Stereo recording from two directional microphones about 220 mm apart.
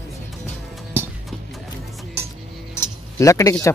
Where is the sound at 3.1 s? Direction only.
15° left (ahead or behind).